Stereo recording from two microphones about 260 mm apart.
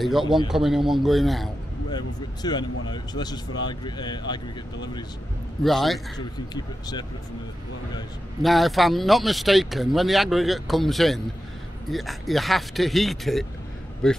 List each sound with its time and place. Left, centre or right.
0.5 s speech: centre
1.9 s speech: centre
5.6 s speech: centre
6.1 s speech: centre
8.4 s speech: centre